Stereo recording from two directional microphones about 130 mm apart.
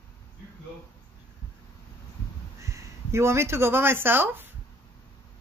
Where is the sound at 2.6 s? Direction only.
25° right (ahead or behind).